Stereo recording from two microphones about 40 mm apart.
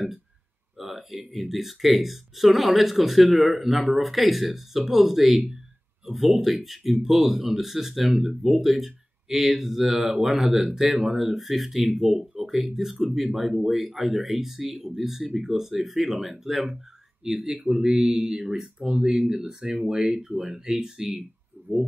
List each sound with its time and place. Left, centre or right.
0.7 s speech: centre
21.7 s speech: right